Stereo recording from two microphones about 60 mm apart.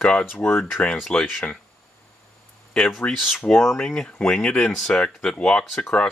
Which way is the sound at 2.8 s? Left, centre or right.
Centre.